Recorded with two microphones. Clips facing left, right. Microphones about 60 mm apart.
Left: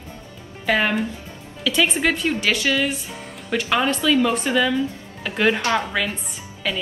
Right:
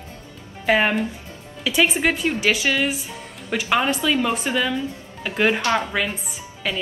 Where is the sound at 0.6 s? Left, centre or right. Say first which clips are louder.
Right 1 dB; centre.